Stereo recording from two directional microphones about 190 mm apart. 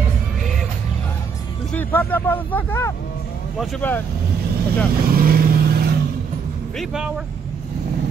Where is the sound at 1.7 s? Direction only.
10° left (ahead or behind).